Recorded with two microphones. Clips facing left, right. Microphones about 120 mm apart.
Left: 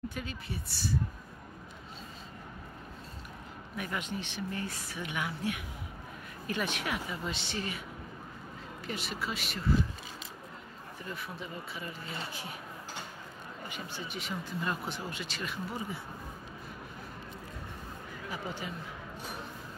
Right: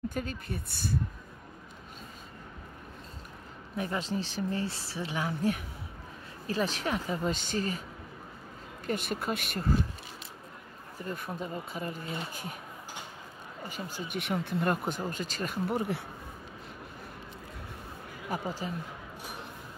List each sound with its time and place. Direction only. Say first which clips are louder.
0.1 s speech: right 4 dB; 45° right (ahead or behind)
3.7 s a woman's voice: right 5 dB; 35° right (ahead or behind)
8.8 s speech: right 5 dB; 50° right (ahead or behind)
11.0 s speech: right 5 dB; 45° right (ahead or behind)
13.7 s a woman's voice: right 4 dB; 40° right (ahead or behind)
14.1 s speech: right 8 dB; 60° right (ahead or behind)
18.3 s speech: right 6 dB; 50° right (ahead or behind)